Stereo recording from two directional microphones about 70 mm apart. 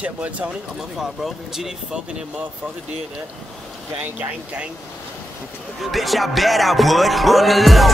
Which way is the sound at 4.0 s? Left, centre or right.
Right.